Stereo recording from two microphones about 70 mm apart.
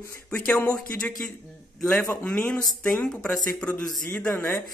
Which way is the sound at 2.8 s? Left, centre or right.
Centre.